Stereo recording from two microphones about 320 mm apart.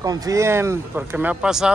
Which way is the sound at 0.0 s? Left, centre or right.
Centre.